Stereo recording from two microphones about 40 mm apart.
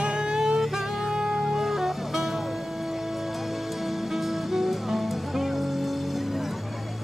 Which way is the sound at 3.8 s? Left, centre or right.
Centre.